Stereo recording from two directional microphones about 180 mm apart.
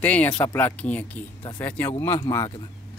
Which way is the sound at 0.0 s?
10° left (ahead or behind).